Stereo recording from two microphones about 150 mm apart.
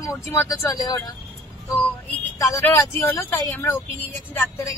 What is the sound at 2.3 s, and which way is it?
Speech, 20° left (ahead or behind).